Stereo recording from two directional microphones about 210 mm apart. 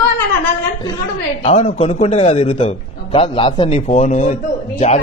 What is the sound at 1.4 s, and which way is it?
A man's voice, 30° left (ahead or behind).